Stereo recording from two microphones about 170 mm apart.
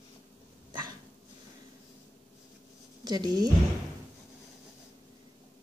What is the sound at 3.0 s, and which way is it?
Speech, 25° right (ahead or behind).